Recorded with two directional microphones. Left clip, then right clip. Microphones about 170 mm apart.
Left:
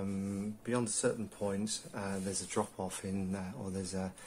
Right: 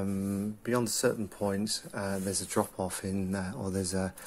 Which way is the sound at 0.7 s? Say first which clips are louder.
Right 5 dB; 35° right (ahead or behind).